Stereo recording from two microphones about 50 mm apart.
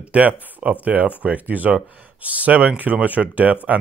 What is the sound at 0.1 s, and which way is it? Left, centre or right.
Speech, right.